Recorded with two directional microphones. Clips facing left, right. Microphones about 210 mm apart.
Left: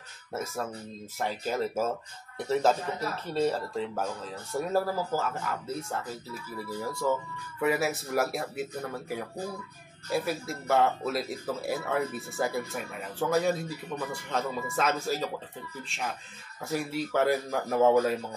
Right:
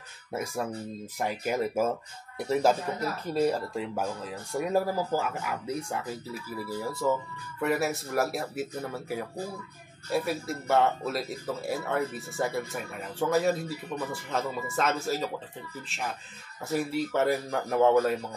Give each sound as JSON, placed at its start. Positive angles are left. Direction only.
{"t": 0.3, "sound": "speech", "side_deg": -10}
{"t": 7.0, "sound": "speech", "side_deg": 0}
{"t": 16.6, "sound": "speech", "side_deg": 0}